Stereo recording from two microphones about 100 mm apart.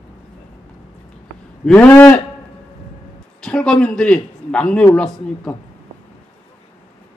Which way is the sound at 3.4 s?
10° left (ahead or behind).